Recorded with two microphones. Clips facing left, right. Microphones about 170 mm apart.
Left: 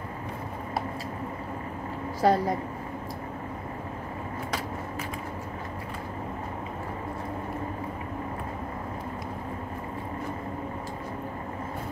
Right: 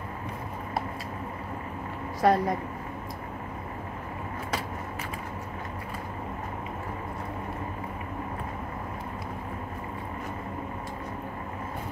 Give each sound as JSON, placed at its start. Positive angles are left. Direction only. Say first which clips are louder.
{"t": 2.2, "sound": "a woman's voice", "louder": "even", "side_deg": 30}